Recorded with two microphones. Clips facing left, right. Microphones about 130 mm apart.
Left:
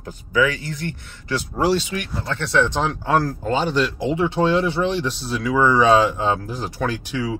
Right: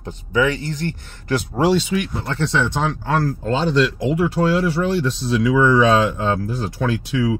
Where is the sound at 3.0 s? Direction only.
10° left (ahead or behind).